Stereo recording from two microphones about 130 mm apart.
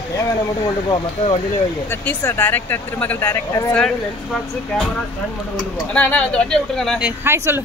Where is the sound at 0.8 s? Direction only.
45° left (ahead or behind).